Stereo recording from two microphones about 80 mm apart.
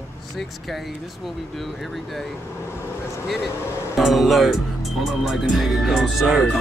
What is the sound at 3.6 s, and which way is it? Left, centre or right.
Speech, left.